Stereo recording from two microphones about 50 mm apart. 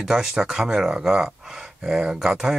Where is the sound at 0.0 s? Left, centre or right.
Centre.